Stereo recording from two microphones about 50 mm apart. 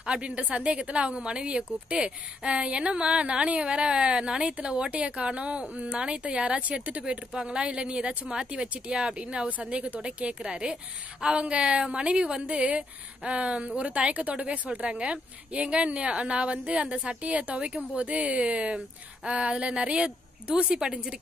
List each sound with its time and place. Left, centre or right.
0.0 s speech: right